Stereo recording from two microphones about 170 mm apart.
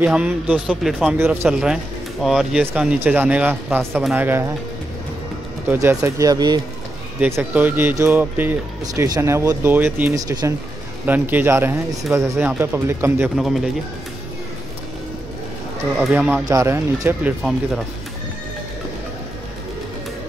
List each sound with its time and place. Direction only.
0.0 s a man's voice: 10° right (ahead or behind)
1.1 s a man's voice: 15° right (ahead or behind)
4.2 s speech: 15° right (ahead or behind)
5.7 s speech: 15° right (ahead or behind)
7.2 s speech: 10° right (ahead or behind)
11.1 s speech: 10° right (ahead or behind)
13.4 s a man's voice: centre (ahead or behind)
16.0 s a man's voice: 5° right (ahead or behind)
16.4 s speech: 15° right (ahead or behind)
17.4 s a man's voice: centre (ahead or behind)